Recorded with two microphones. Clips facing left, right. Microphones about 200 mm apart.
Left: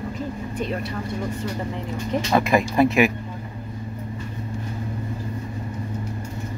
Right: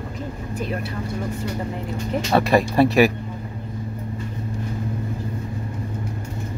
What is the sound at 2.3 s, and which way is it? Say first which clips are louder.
Speech: right 2 dB; 35° right (ahead or behind).